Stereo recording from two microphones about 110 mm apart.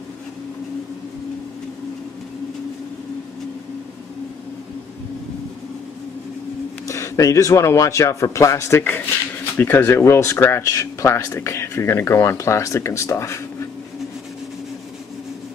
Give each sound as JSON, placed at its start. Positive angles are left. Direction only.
{"t": 6.9, "sound": "speech", "side_deg": 30}
{"t": 9.6, "sound": "speech", "side_deg": 15}